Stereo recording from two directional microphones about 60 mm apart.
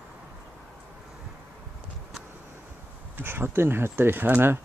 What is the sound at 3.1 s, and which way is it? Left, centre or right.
Speech, right.